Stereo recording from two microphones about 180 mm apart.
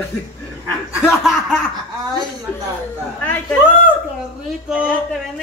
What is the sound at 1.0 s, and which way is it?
Speech, 5° right (ahead or behind).